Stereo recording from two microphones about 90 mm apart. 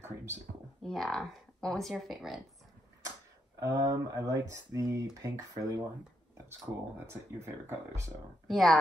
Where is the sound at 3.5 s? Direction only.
40° right (ahead or behind).